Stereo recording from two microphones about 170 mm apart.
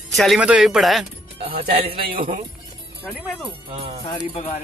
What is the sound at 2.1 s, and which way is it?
Speech, 55° right (ahead or behind).